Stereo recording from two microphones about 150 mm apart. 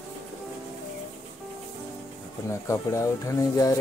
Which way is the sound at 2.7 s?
20° left (ahead or behind).